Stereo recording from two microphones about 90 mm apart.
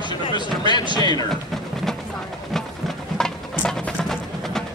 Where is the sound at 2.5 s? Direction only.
5° left (ahead or behind).